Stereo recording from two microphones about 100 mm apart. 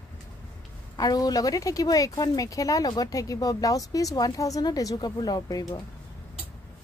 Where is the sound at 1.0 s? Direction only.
40° left (ahead or behind).